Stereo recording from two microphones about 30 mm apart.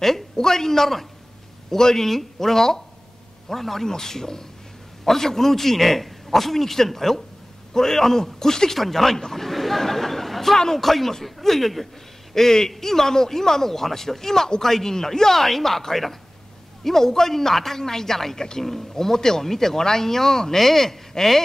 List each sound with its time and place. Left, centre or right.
0.0 s a man's voice: centre
8.7 s chatter: centre
10.8 s speech: centre
21.1 s a sound: centre